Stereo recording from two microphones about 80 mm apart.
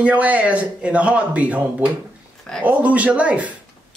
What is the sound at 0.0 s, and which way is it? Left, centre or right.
Speech, centre.